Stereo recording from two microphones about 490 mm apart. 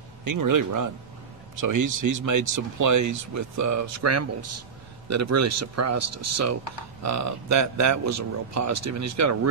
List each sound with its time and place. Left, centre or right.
0.2 s speech: right